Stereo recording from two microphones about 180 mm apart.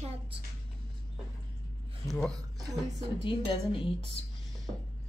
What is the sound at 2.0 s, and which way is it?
Speech, 5° left (ahead or behind).